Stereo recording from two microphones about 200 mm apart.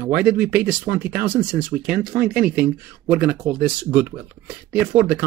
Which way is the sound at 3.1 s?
5° right (ahead or behind).